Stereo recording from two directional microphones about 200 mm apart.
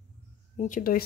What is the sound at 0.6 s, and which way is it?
Speech, 45° left (ahead or behind).